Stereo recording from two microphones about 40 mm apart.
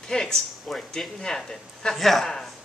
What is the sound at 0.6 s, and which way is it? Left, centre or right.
Speech, centre.